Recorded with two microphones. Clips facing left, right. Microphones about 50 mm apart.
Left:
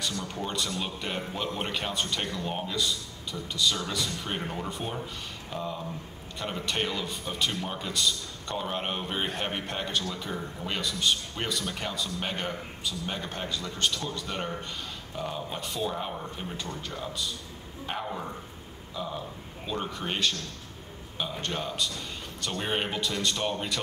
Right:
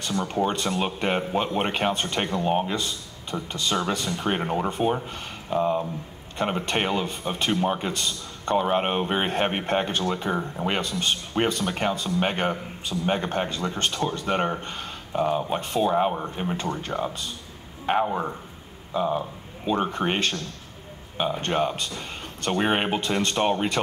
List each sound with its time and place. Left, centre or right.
0.0 s a man's voice: right